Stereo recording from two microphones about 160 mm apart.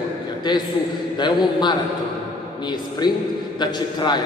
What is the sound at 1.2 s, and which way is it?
Speech, 30° left (ahead or behind).